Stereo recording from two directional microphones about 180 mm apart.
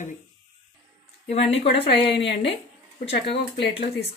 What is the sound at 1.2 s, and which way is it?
Speech, 35° left (ahead or behind).